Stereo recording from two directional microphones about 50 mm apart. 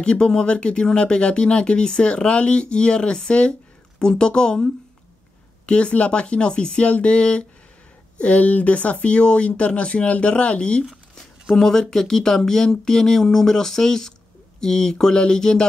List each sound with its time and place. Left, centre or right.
0.0 s speech: centre
10.9 s a sound: centre
11.5 s speech: centre